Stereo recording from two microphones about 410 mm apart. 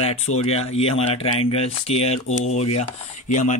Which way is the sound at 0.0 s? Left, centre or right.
Centre.